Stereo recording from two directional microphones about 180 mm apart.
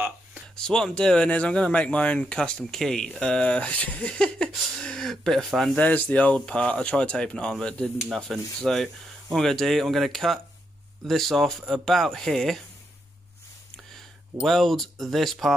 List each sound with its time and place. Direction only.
0.6 s speech: 5° left (ahead or behind)
13.9 s speech: centre (ahead or behind)